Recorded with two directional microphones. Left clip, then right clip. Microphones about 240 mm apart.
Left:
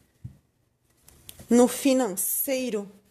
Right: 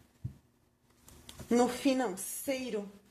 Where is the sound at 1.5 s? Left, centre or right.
Left.